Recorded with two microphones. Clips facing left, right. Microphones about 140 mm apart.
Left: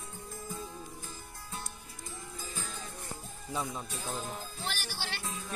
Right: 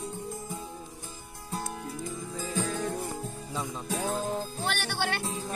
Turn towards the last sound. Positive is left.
turn(degrees=-30)  # may be behind; listen again after turning